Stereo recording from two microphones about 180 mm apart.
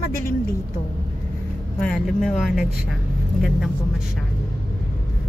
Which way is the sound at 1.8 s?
5° left (ahead or behind).